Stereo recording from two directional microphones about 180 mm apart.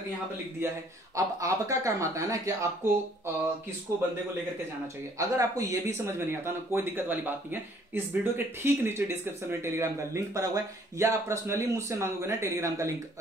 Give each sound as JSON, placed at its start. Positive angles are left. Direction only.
{"t": 1.1, "sound": "speech", "side_deg": -15}
{"t": 5.2, "sound": "speech", "side_deg": -15}